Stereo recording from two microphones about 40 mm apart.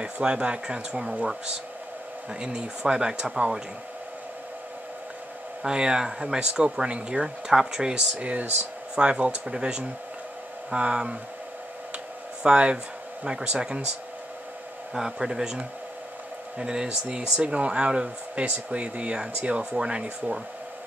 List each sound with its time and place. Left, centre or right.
0.0 s speech: right
2.4 s speech: centre
5.6 s speech: centre
7.4 s speech: centre
8.2 s speech: right
12.4 s speech: right
15.0 s speech: centre